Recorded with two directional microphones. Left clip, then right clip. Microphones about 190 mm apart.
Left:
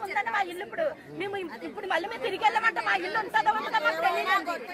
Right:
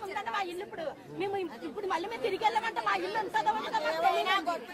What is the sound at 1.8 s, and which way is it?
Speech, 25° right (ahead or behind).